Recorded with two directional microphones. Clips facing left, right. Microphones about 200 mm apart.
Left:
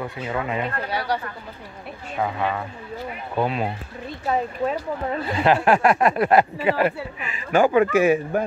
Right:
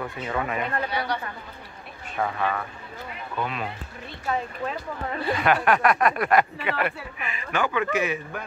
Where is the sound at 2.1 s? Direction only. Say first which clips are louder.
Left 2 dB; 15° left (ahead or behind).